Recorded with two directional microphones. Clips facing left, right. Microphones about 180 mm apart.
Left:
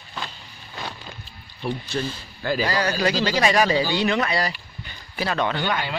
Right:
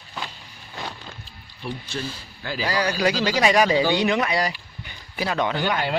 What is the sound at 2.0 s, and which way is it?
Speech, 45° left (ahead or behind).